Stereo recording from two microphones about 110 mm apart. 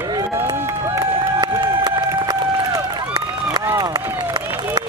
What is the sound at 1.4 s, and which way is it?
Run, 40° right (ahead or behind).